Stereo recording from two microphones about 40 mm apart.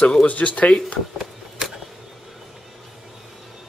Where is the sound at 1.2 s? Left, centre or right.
Centre.